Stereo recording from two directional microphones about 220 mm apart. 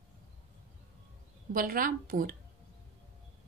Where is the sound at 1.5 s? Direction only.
40° right (ahead or behind).